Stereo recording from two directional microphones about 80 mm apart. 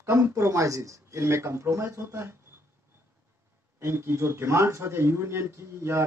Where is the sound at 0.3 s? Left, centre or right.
Right.